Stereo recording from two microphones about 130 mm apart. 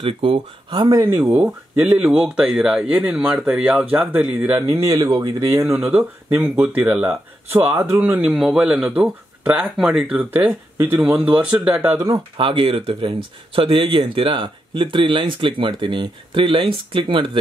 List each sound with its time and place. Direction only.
0.0 s speech: 45° right (ahead or behind)
0.8 s speech: 25° right (ahead or behind)
2.0 s speech: 5° right (ahead or behind); by 5.7 s 25° right (ahead or behind)
5.9 s speech: 15° right (ahead or behind)
12.1 s speech: 40° right (ahead or behind)